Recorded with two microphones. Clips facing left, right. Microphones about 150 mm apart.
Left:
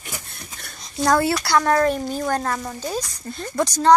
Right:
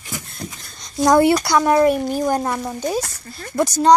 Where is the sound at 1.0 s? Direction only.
15° right (ahead or behind).